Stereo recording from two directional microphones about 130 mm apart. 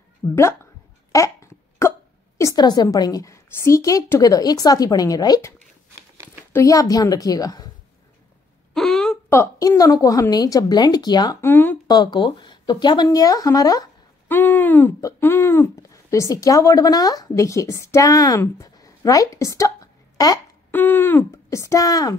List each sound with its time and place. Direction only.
0.2 s speech: 40° left (ahead or behind)
1.1 s speech: 25° left (ahead or behind)
6.5 s a woman's voice: 25° left (ahead or behind)
8.7 s a sound: 5° left (ahead or behind)
9.3 s a woman's voice: 25° left (ahead or behind)
11.4 s speech: 15° left (ahead or behind)
11.9 s speech: 35° left (ahead or behind)
14.2 s a sound: 15° left (ahead or behind)
15.0 s speech: 20° left (ahead or behind)
20.7 s a woman's voice: 15° left (ahead or behind)